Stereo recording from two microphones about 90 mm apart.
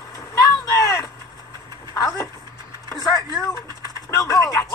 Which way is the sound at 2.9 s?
45° left (ahead or behind).